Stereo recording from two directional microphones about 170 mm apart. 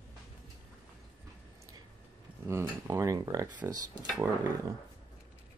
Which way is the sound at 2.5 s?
15° right (ahead or behind).